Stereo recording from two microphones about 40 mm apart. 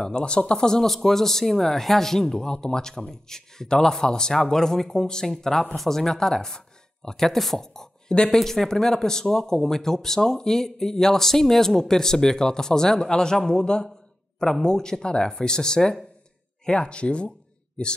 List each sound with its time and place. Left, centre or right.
0.0 s speech: left